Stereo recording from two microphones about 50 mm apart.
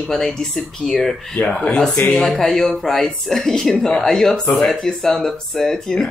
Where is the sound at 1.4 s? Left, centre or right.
Left.